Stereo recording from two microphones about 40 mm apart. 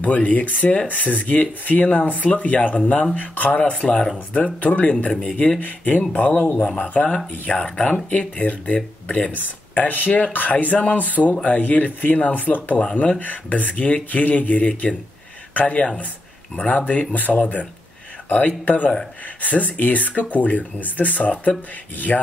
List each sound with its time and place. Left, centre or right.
0.0 s speech: left
5.6 s speech: left
7.5 s speech: left
8.1 s speech: left
9.4 s speech: left
19.4 s speech: left